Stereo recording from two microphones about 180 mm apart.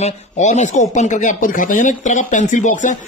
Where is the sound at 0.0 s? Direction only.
40° left (ahead or behind).